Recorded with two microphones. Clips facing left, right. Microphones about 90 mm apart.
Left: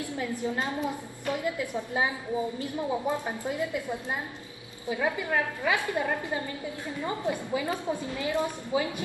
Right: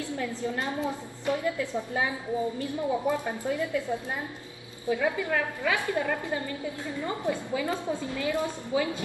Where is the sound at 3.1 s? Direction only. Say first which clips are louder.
Right 2 dB; 20° left (ahead or behind).